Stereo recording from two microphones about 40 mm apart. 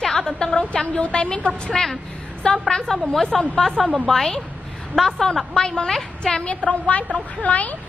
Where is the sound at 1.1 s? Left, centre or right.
Left.